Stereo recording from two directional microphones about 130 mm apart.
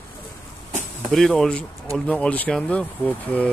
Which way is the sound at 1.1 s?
5° left (ahead or behind).